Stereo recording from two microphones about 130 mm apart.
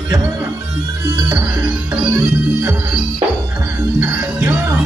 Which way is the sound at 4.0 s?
15° right (ahead or behind).